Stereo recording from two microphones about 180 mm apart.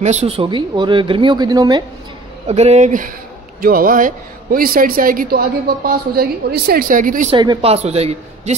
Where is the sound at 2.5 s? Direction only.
35° right (ahead or behind).